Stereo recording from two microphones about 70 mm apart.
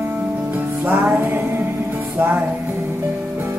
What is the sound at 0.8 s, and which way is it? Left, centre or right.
Music, right.